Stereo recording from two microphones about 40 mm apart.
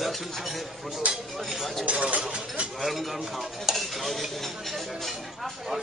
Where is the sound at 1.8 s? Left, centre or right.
Right.